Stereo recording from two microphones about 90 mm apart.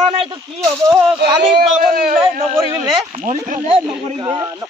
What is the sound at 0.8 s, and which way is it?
Speech, 40° right (ahead or behind).